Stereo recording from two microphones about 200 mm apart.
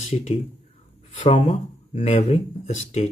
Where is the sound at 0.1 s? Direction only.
35° left (ahead or behind).